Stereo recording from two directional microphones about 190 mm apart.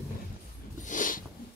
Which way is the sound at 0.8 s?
45° left (ahead or behind).